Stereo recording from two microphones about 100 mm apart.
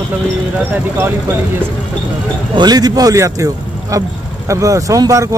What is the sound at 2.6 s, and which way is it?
Speech, 40° right (ahead or behind).